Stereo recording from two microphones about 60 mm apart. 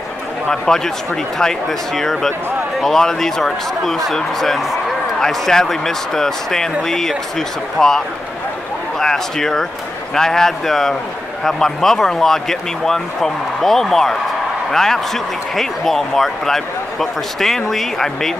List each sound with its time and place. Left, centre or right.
0.5 s speech: centre
9.0 s speech: centre